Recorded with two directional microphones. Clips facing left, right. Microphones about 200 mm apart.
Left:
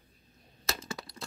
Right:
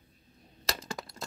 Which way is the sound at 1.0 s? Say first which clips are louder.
Right 2 dB; 45° right (ahead or behind).